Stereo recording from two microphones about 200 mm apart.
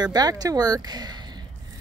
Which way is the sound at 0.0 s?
20° right (ahead or behind).